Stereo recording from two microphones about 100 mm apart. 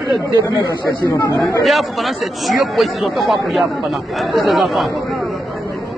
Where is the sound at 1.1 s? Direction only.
25° left (ahead or behind).